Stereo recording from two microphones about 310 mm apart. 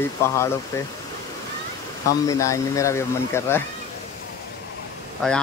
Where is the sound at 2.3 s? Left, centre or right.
Centre.